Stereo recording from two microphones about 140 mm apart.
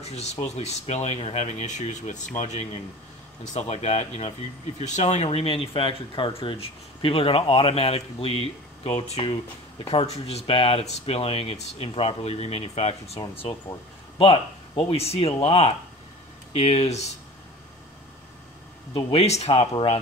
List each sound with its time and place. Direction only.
0.0 s speech: 50° left (ahead or behind)
18.9 s speech: 40° left (ahead or behind)